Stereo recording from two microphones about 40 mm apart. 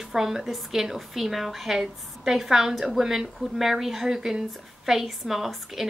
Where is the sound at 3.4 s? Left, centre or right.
Centre.